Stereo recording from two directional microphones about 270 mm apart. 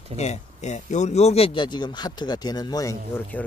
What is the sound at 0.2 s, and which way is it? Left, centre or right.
Speech, left.